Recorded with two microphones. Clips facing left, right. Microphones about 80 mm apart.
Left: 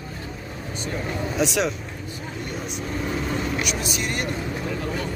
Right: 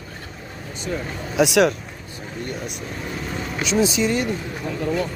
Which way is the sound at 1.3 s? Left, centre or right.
Right.